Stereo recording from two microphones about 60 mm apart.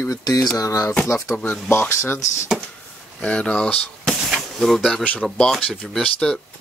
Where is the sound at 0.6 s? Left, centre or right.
Left.